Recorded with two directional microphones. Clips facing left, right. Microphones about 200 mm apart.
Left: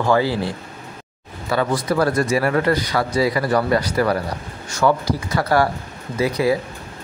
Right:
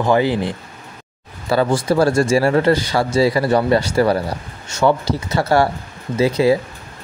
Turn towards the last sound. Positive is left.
turn(degrees=-25)  # may be behind; listen again after turning